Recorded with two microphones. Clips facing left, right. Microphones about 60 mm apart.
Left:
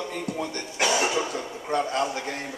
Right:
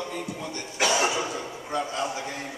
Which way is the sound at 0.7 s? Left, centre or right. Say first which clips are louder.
Even; centre.